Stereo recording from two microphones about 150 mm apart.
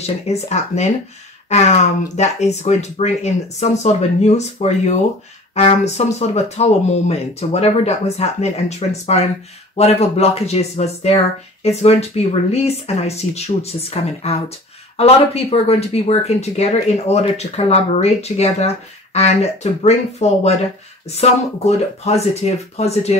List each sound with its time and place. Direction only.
0.0 s speech: 45° left (ahead or behind)